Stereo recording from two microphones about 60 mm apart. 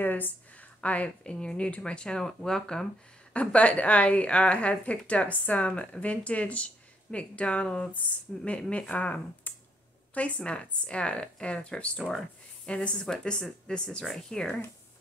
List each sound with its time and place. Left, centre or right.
0.0 s speech: left; by 2.9 s centre
3.3 s speech: left